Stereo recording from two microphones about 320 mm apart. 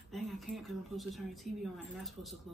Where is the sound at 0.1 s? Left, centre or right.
Centre.